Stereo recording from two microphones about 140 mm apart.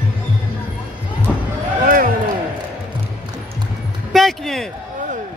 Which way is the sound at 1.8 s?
80° right.